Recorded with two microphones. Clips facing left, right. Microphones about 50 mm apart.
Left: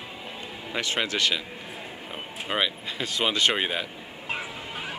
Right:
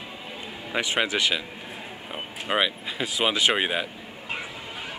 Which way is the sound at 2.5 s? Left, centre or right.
Centre.